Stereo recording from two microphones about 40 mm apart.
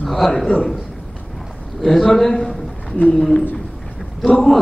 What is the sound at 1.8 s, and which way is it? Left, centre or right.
Speech, centre.